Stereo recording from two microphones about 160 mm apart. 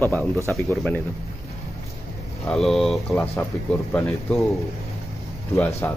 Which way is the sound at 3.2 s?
15° left (ahead or behind).